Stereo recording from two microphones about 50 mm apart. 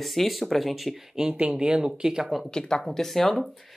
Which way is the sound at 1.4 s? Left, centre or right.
Right.